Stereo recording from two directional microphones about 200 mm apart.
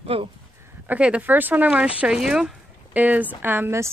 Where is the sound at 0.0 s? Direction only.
30° right (ahead or behind).